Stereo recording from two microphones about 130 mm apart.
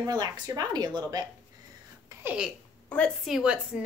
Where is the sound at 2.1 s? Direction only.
15° right (ahead or behind).